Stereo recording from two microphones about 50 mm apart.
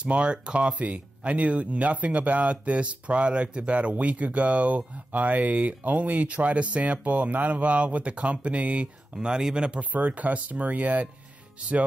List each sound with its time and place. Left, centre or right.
0.0 s speech: right
9.1 s speech: centre
9.8 s speech: right